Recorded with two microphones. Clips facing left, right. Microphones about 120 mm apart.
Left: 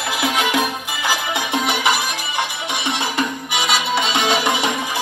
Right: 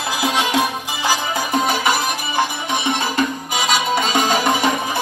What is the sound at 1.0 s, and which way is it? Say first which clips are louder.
Music: right 2 dB; 40° right (ahead or behind).